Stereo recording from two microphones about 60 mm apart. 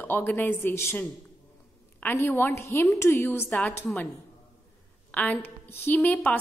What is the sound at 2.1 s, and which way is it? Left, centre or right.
A woman's voice, left.